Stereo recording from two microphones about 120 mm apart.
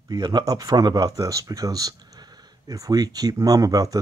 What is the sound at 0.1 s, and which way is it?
Speech, 35° right (ahead or behind).